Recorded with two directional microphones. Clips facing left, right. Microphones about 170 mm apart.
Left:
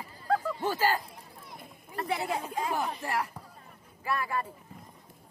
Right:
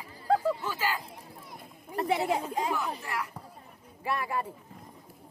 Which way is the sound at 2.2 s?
20° right (ahead or behind).